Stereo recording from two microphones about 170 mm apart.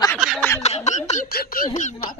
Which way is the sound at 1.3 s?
60° left (ahead or behind).